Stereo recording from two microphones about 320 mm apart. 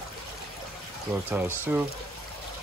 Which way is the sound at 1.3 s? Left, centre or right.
Centre.